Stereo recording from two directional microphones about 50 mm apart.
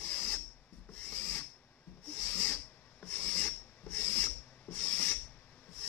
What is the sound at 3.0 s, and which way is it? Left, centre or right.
Filing, left.